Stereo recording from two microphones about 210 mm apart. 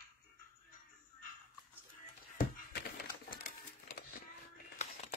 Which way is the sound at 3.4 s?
40° left (ahead or behind).